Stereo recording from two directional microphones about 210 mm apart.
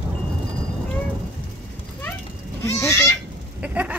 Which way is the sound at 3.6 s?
5° right (ahead or behind).